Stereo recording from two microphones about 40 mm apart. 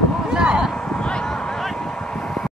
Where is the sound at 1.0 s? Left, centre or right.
Left.